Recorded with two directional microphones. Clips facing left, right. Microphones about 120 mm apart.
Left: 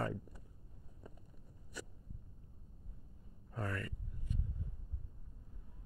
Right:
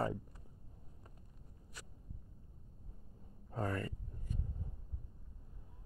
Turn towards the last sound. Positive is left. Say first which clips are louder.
# right 3 dB
turn(degrees=-25)  # may be behind; listen again after turning